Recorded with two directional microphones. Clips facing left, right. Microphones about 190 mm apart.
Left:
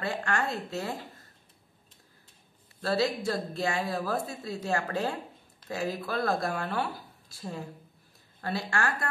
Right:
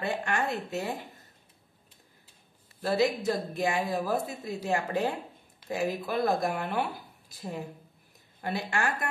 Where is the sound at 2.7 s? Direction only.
15° right (ahead or behind).